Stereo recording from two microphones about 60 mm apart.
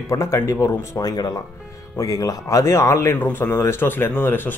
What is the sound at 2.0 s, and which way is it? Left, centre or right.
Speech, left.